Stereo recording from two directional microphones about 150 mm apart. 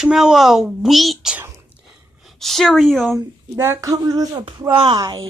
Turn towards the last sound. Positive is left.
turn(degrees=-25)  # may be behind; listen again after turning